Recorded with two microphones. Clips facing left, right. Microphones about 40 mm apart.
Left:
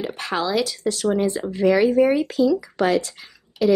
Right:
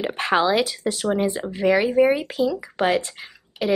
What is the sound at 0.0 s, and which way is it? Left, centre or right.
Speech, right.